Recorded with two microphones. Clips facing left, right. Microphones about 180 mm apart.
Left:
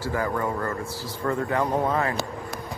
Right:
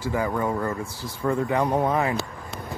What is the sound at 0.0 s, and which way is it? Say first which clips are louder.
Speech: right 1 dB; 15° right (ahead or behind).